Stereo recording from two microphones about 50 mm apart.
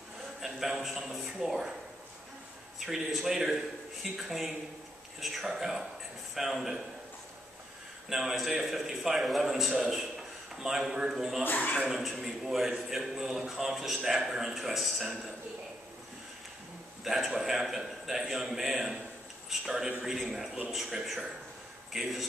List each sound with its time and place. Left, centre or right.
0.4 s a man's voice: centre
2.8 s a man's voice: centre
8.1 s a man's voice: centre
11.4 s speech: left
12.3 s a man's voice: centre
17.0 s a man's voice: centre
21.9 s a man's voice: centre